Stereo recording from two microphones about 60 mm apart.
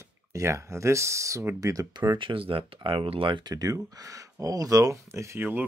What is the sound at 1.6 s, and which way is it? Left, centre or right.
Speech, right.